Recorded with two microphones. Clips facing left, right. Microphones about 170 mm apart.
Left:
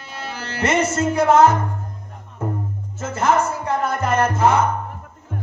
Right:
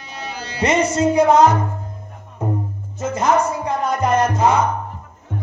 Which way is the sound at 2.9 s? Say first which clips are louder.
Right 1 dB; 15° right (ahead or behind).